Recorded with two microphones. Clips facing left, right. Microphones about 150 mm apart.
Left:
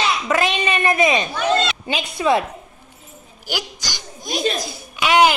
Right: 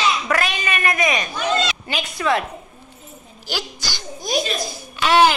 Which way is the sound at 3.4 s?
15° left (ahead or behind).